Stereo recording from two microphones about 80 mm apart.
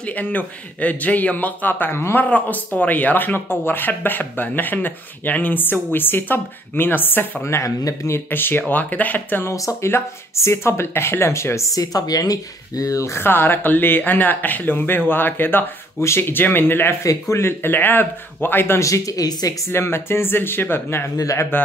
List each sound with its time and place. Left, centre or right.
0.0 s speech: left
7.4 s speech: left
8.3 s speech: left
9.5 s speech: left
17.0 s speech: left
18.8 s speech: left
19.7 s speech: left
21.2 s speech: left